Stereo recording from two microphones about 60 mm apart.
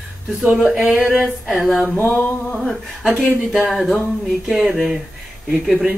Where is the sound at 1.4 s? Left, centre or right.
Centre.